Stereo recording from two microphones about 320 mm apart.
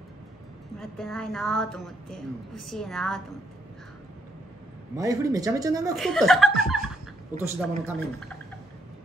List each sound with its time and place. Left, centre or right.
0.7 s speech: centre
1.8 s a woman's voice: left
2.6 s speech: centre
4.9 s speech: centre
5.9 s speech: centre